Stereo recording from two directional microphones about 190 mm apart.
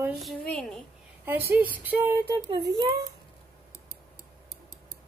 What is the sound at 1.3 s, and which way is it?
Female singing, 10° right (ahead or behind).